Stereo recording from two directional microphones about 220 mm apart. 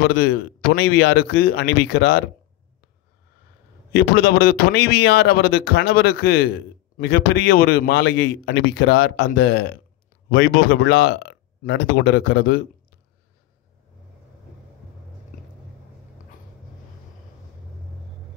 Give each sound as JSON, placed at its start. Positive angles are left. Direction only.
{"t": 0.1, "sound": "a man's voice", "side_deg": 45}
{"t": 3.9, "sound": "a man's voice", "side_deg": 45}